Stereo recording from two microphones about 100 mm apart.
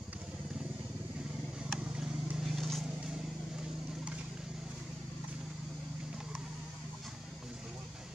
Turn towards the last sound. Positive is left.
turn(degrees=-5)  # may be behind; listen again after turning